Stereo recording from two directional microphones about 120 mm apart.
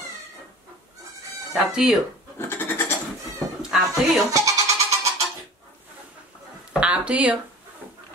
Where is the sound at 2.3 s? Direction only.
15° left (ahead or behind).